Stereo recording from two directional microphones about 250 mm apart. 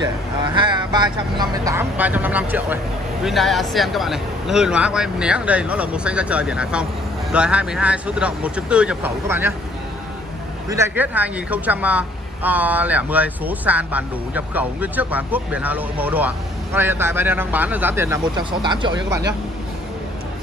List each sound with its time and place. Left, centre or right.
0.6 s a woman's voice: centre
10.7 s a woman's voice: centre